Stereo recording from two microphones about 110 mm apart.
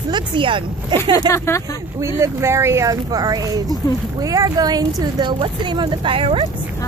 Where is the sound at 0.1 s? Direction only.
50° right (ahead or behind).